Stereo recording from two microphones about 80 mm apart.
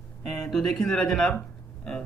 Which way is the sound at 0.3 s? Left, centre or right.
Centre.